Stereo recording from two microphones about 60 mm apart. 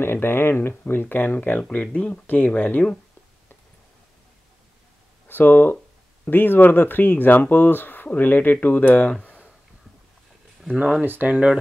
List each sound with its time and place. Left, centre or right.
0.0 s speech: left
5.3 s speech: left
9.2 s a sound: left
11.2 s speech: right